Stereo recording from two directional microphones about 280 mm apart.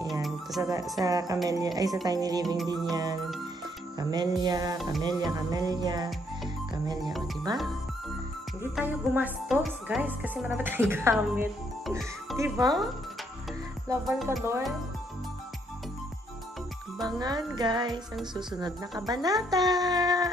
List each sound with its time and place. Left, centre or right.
0.1 s music: centre
0.6 s speech: centre
7.5 s speech: centre
8.7 s speech: centre
14.0 s music: centre
17.6 s speech: centre